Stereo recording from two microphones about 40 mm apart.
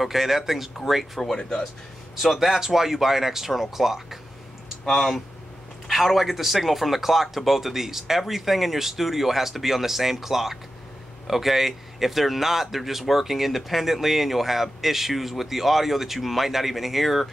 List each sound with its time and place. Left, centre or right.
0.0 s speech: centre
1.3 s speech: centre
2.1 s speech: centre
4.8 s speech: centre